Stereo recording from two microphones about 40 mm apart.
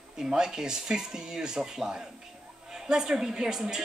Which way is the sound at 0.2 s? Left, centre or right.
Centre.